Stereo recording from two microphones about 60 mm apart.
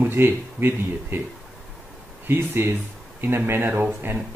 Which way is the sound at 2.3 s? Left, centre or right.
Right.